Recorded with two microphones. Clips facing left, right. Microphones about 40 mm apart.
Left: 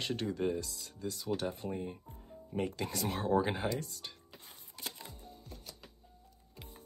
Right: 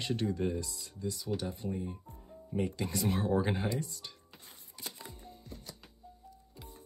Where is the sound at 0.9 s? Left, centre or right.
Left.